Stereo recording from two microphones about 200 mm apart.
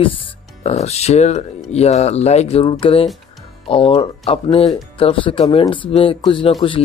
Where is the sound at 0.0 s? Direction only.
30° left (ahead or behind).